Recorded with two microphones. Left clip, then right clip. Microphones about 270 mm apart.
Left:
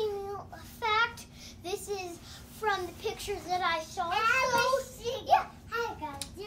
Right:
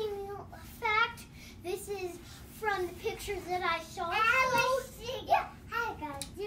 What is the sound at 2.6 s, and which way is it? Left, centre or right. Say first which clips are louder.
Child singing: left 2 dB; centre.